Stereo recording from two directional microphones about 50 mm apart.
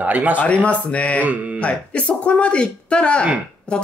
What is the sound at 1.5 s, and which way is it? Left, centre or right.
Speech, left.